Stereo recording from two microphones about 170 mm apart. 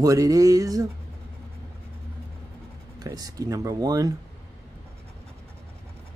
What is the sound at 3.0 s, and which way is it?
Speech, 20° right (ahead or behind).